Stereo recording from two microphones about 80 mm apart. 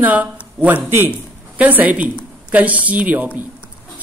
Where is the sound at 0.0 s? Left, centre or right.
Right.